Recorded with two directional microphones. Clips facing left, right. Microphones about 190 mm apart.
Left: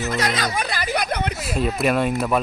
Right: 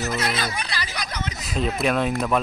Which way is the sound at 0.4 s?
45° left (ahead or behind).